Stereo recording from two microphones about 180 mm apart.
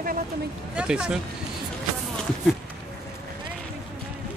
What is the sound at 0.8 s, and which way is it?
Speech, 5° right (ahead or behind).